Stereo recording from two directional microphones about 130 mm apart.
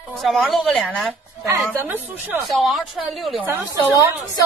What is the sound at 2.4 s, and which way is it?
A woman's voice, centre (ahead or behind).